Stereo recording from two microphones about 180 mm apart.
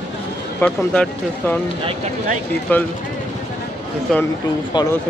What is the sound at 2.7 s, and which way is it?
Speech, 10° left (ahead or behind).